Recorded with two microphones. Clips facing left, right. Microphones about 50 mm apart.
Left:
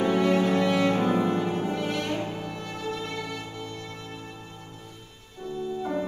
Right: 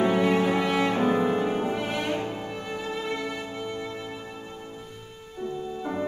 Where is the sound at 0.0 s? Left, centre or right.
Centre.